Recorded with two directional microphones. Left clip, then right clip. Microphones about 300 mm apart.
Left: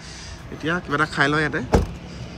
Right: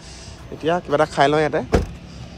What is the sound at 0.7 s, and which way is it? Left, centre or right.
Speech, right.